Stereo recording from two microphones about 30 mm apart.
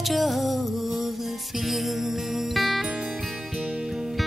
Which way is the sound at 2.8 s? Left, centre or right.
Centre.